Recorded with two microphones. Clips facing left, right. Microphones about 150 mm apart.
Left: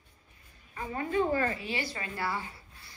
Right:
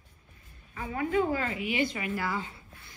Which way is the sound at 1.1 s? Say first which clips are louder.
Left 1 dB; 15° right (ahead or behind).